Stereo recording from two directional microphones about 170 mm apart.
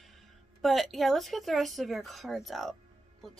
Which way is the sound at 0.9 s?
Centre (ahead or behind).